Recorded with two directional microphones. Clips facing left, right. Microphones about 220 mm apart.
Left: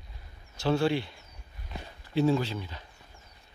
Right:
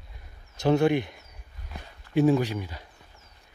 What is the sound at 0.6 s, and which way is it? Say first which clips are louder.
Speech: right 5 dB; 20° right (ahead or behind).